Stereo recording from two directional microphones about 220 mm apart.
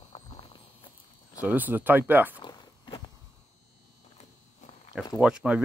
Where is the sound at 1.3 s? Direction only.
5° right (ahead or behind).